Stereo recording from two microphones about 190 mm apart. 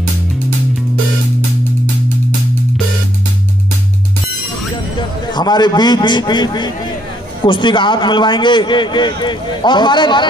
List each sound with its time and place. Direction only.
5.3 s a man's voice: 20° left (ahead or behind)